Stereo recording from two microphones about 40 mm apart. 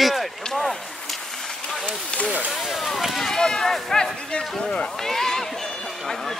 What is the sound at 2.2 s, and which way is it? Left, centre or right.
Speech, right.